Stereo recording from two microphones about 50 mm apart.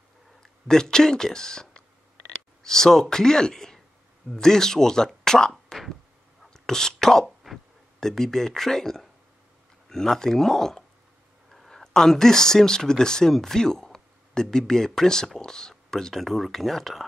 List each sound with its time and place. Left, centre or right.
0.4 s speech: centre
6.4 s whispering: centre
7.2 s a sound: centre
8.0 s speech: centre